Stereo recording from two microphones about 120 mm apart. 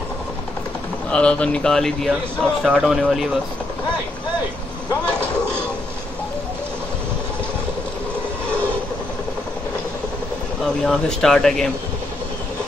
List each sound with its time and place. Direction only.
1.1 s speech: 10° left (ahead or behind)
10.8 s speech: 5° left (ahead or behind)